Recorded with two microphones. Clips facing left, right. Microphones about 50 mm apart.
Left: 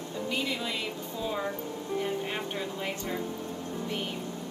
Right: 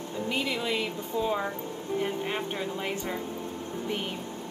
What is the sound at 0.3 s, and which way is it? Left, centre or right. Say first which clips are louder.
Speech: right 3 dB; centre.